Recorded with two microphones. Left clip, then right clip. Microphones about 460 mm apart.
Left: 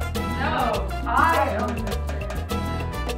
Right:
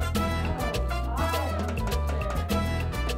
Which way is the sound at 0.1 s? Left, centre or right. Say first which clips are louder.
Left 8 dB; left.